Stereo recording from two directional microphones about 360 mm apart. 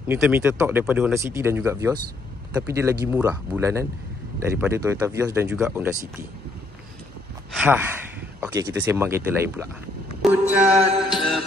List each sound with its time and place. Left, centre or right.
0.0 s speech: centre
7.5 s speech: centre
10.3 s music: centre